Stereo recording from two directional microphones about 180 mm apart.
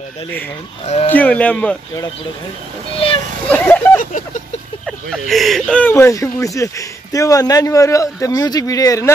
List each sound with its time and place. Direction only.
0.8 s speech: 35° left (ahead or behind)
1.1 s speech: 10° left (ahead or behind)
3.4 s speech: 10° left (ahead or behind)